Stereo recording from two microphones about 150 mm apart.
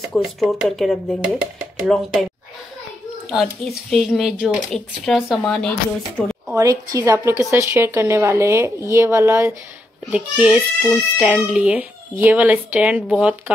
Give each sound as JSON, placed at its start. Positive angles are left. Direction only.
{"t": 0.1, "sound": "speech", "side_deg": 0}
{"t": 3.9, "sound": "speech", "side_deg": 0}
{"t": 6.5, "sound": "a woman's voice", "side_deg": -25}